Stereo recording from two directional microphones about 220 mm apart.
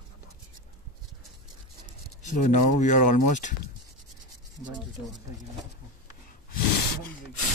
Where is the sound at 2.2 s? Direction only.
35° left (ahead or behind).